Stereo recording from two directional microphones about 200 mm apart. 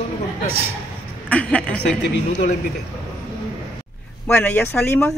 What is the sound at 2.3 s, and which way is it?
Speech, 40° left (ahead or behind).